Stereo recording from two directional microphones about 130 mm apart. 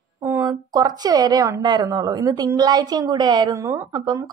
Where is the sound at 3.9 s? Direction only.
35° right (ahead or behind).